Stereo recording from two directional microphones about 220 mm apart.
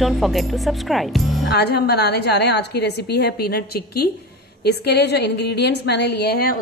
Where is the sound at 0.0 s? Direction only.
Centre (ahead or behind).